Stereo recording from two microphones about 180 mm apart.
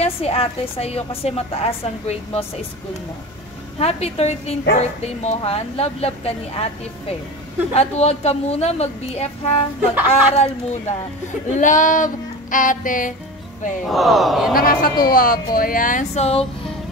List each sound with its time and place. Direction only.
0.0 s a woman's voice: 30° left (ahead or behind)
3.8 s a woman's voice: 35° left (ahead or behind)
9.8 s speech: 10° right (ahead or behind)
10.3 s a woman's voice: 35° left (ahead or behind)
11.6 s a woman's voice: 45° left (ahead or behind)
13.8 s speech: centre (ahead or behind)
14.5 s a woman's voice: 55° left (ahead or behind); by 16.4 s 35° left (ahead or behind)